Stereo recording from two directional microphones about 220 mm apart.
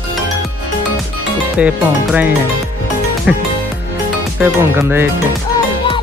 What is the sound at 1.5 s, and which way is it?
Speech, 5° right (ahead or behind).